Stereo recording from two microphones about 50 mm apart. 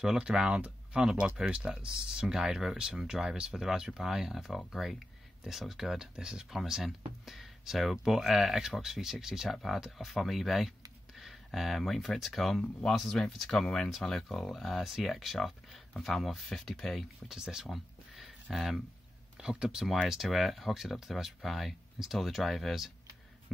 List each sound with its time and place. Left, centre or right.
0.0 s speech: centre
0.6 s a sound: right
1.5 s speech: centre
17.3 s speech: centre
17.6 s a sound: centre
19.3 s speech: centre
20.0 s speech: centre